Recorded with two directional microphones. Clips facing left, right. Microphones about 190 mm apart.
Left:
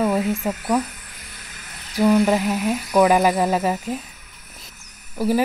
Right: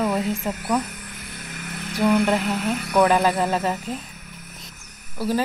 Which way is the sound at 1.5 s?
55° right (ahead or behind).